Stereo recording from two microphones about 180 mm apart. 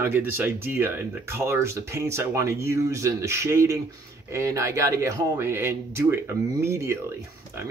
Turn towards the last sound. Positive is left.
turn(degrees=-15)  # may be behind; listen again after turning